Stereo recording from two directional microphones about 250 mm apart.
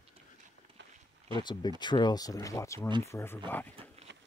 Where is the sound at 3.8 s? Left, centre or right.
Right.